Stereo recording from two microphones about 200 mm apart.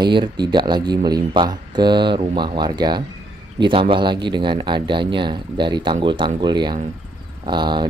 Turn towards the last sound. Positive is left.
turn(degrees=-20)  # may be behind; listen again after turning